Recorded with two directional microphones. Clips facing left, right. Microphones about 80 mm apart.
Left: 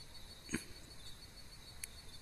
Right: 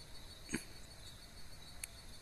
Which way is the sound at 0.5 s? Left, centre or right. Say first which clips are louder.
Left 1 dB; centre.